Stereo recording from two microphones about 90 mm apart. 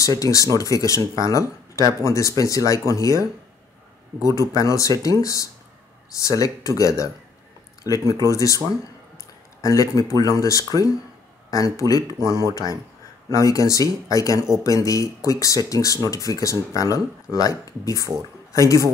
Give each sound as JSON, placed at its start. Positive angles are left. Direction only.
{"t": 0.0, "sound": "speech", "side_deg": 40}
{"t": 4.4, "sound": "speech", "side_deg": 35}
{"t": 9.6, "sound": "speech", "side_deg": 40}
{"t": 13.3, "sound": "speech", "side_deg": 40}